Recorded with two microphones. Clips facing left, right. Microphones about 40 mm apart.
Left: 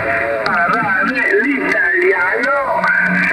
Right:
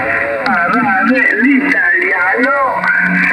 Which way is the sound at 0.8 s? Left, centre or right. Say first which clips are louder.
Right 3 dB; right.